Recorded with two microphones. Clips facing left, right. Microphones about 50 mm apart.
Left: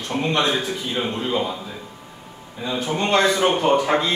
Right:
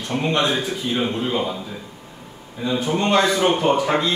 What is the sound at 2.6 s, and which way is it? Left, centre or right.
Speech, centre.